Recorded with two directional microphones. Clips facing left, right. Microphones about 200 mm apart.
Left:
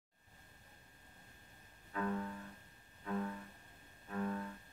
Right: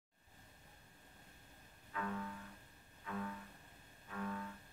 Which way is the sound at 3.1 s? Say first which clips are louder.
Left 5 dB; 35° left (ahead or behind).